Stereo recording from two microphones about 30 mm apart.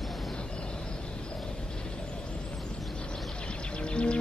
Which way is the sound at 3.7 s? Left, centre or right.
Left.